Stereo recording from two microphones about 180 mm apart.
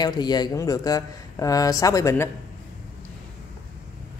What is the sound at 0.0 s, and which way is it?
A man's voice, 25° left (ahead or behind).